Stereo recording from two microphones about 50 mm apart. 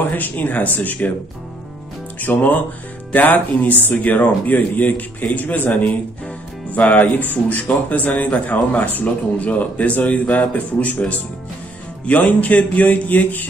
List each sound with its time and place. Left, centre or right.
0.1 s a man's voice: left
2.1 s a man's voice: left